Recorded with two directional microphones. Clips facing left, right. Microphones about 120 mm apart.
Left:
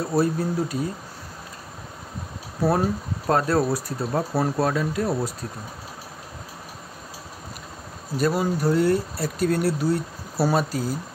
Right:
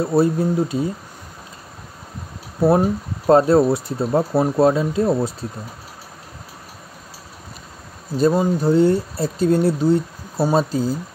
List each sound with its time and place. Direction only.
0.0 s speech: 25° right (ahead or behind)
2.6 s speech: 25° right (ahead or behind)
8.2 s speech: 25° right (ahead or behind)